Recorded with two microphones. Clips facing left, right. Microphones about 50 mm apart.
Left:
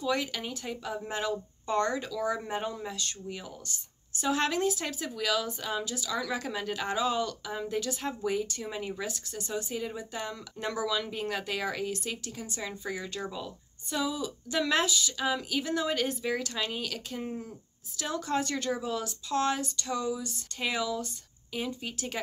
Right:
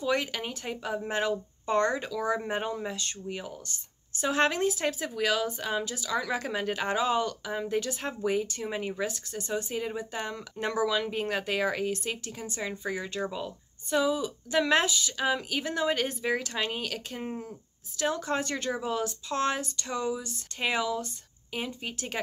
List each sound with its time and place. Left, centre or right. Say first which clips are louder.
0.0 s speech: right 2 dB; right